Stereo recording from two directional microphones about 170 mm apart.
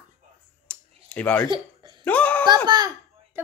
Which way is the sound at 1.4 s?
30° right (ahead or behind).